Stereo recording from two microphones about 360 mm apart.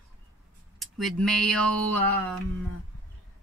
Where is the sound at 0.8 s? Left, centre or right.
Centre.